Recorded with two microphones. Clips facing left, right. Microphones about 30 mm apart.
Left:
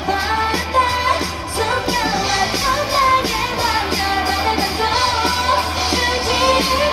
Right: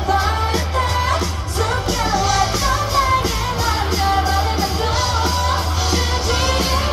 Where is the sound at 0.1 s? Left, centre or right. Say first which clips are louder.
Even; centre.